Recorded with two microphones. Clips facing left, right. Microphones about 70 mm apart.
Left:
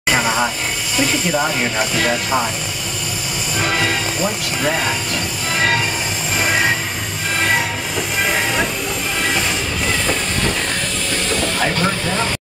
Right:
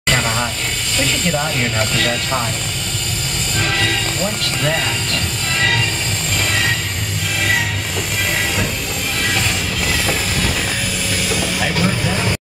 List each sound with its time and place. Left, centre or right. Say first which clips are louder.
0.1 s a sound: left 2 dB; centre
0.9 s speech: left 2 dB; centre
3.5 s train: left 1 dB; centre
6.3 s train: left 3 dB; centre
9.8 s train: even; centre
11.2 s vehicle: left 2 dB; centre